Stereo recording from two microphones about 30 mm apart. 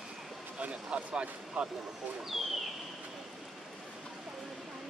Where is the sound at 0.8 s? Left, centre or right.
Right.